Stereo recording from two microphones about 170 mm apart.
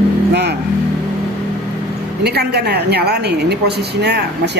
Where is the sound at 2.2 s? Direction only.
75° right (ahead or behind).